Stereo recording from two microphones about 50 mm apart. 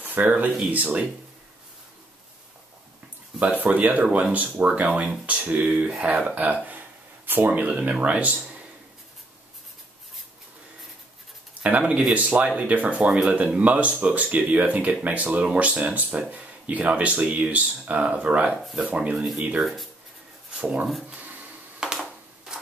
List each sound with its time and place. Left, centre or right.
0.0 s speech: right
3.8 s speech: right
7.5 s speech: right
11.6 s speech: right
18.6 s speech: centre
19.3 s speech: right
19.6 s speech: centre
20.5 s speech: right
21.1 s a sound: right
21.7 s a sound: centre